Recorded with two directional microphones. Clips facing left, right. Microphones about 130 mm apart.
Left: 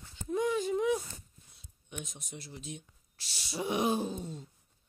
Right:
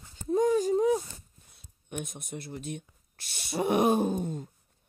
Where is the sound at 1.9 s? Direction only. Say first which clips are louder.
Right 7 dB; 55° right (ahead or behind).